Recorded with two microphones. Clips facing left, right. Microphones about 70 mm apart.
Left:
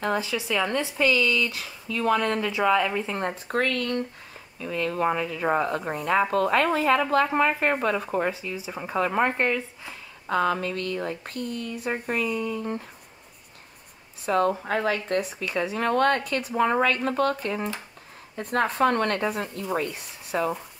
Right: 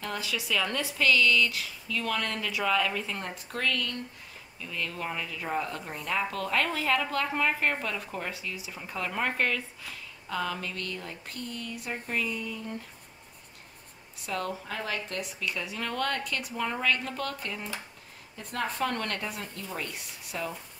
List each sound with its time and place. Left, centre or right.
0.0 s speech: left
1.5 s speech: left
3.2 s speech: left
8.3 s speech: left
9.4 s speech: left
10.3 s speech: left
14.2 s speech: left